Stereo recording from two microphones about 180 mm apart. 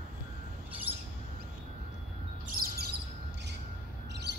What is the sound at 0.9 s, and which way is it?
Bird, 35° right (ahead or behind).